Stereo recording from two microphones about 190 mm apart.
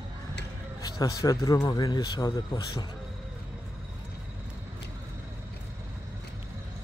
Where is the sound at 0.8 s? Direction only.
20° left (ahead or behind).